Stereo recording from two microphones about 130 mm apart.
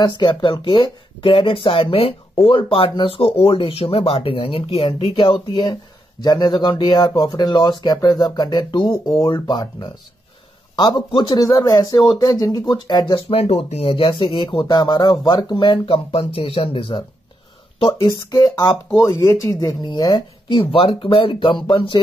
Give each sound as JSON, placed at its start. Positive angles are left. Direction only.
{"t": 0.0, "sound": "speech", "side_deg": 35}
{"t": 5.5, "sound": "speech", "side_deg": 30}
{"t": 18.3, "sound": "speech", "side_deg": 25}